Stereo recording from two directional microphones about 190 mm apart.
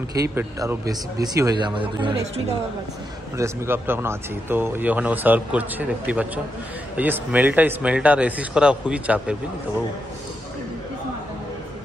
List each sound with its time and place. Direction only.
0.3 s speech: 10° right (ahead or behind)
3.3 s speech: 15° right (ahead or behind)